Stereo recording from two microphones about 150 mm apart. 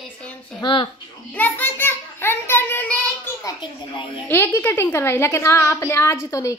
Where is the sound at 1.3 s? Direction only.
10° left (ahead or behind).